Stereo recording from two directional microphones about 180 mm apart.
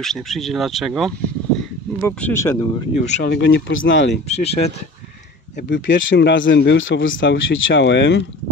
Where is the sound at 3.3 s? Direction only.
80° left.